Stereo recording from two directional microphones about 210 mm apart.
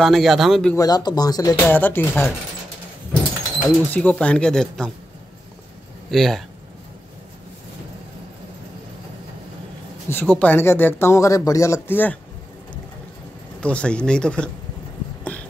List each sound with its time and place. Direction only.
0.0 s speech: centre (ahead or behind)
0.7 s speech: 20° left (ahead or behind)
3.6 s speech: 5° left (ahead or behind)
6.0 s speech: centre (ahead or behind)
10.0 s speech: 5° left (ahead or behind)
13.6 s speech: 5° left (ahead or behind)